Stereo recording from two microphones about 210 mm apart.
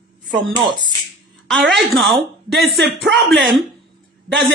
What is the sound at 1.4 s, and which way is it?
Speech, centre (ahead or behind).